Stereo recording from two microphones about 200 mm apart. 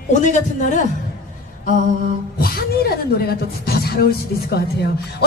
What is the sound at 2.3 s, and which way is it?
Speech, 50° left (ahead or behind).